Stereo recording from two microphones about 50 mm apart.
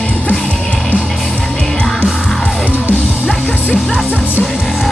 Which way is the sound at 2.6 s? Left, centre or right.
Right.